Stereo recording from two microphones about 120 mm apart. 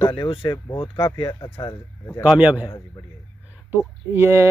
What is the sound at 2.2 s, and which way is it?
Speech, 10° right (ahead or behind).